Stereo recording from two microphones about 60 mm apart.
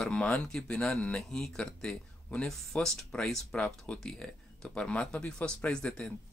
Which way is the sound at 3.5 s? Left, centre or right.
Left.